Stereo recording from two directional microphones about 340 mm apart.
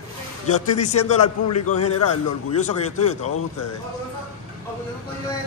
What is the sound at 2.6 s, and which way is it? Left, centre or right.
Speech, left.